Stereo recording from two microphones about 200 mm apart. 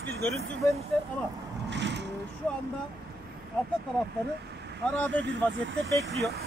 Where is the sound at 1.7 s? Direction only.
60° right (ahead or behind).